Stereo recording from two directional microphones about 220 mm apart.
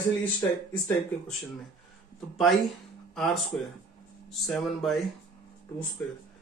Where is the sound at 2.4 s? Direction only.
Centre (ahead or behind).